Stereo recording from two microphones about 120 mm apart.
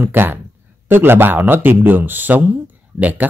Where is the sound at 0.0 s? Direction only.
15° right (ahead or behind).